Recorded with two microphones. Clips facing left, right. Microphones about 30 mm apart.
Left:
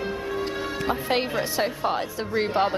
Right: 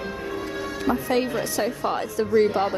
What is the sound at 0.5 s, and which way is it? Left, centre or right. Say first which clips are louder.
Music: left 1 dB; left.